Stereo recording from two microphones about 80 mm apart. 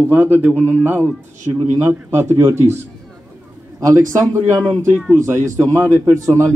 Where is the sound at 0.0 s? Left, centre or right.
Right.